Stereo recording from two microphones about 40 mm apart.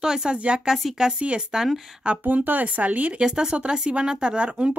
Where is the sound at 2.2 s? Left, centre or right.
Right.